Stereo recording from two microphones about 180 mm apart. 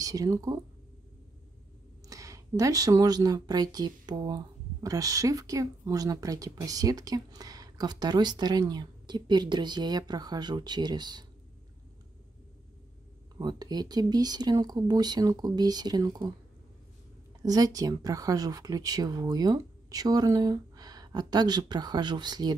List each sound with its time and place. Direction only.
0.0 s speech: 20° right (ahead or behind)
2.0 s speech: 15° right (ahead or behind)
13.4 s speech: 20° right (ahead or behind)
17.5 s speech: 20° right (ahead or behind)